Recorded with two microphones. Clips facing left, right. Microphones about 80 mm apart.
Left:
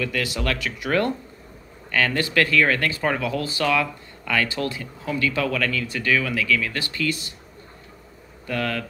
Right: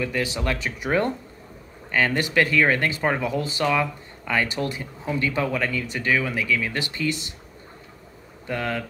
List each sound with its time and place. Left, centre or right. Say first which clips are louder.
0.0 s speech: even; right
8.5 s speech: left 1 dB; centre